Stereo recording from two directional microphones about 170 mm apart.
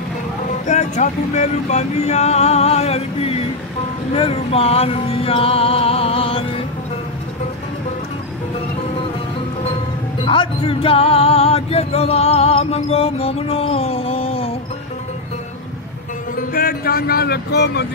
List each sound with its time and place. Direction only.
0.7 s music: 45° left (ahead or behind)
10.2 s music: 30° left (ahead or behind)
16.3 s speech: 60° left (ahead or behind)